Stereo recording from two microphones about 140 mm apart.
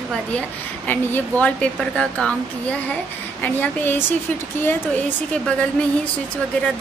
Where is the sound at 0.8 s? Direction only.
10° left (ahead or behind).